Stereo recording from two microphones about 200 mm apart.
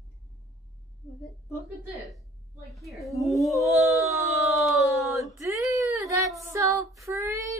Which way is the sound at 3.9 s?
15° right (ahead or behind).